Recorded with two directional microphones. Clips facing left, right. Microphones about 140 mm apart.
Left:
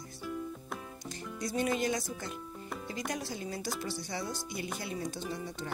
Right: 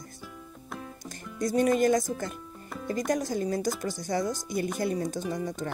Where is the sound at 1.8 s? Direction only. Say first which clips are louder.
Right 9 dB; 45° right (ahead or behind).